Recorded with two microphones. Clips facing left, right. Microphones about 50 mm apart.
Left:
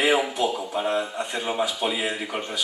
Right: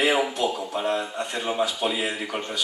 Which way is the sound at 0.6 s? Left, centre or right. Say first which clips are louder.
Left 1 dB; centre.